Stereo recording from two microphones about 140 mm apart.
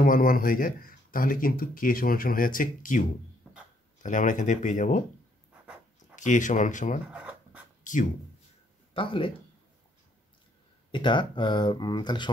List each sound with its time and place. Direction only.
0.0 s speech: 85° left; by 5.0 s 60° left (ahead or behind)
6.1 s speech: 65° left (ahead or behind)
7.1 s a sound: 10° right (ahead or behind)
7.8 s a sound: 65° left (ahead or behind)
8.9 s speech: 40° left (ahead or behind)
10.9 s speech: 35° left (ahead or behind)